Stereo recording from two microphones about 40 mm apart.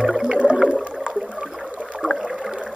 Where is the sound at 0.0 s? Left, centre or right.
Centre.